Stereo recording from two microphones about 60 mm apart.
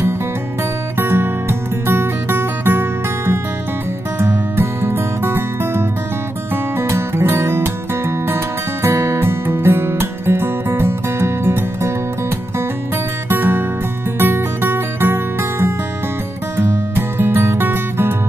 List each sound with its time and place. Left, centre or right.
0.9 s music: right
13.3 s music: right